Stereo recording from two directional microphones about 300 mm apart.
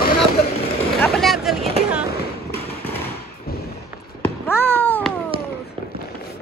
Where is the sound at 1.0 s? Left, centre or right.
Centre.